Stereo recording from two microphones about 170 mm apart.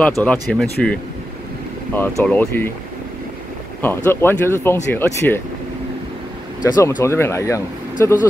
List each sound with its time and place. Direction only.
0.0 s speech: 10° left (ahead or behind)
2.0 s speech: 5° left (ahead or behind)
3.8 s speech: 15° left (ahead or behind)
6.6 s speech: 20° left (ahead or behind)